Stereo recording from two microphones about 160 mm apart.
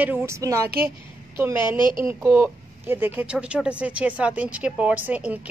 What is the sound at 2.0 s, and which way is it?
A woman's voice, 15° right (ahead or behind).